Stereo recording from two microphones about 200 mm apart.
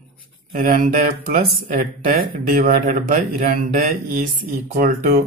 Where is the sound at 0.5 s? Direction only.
40° right (ahead or behind).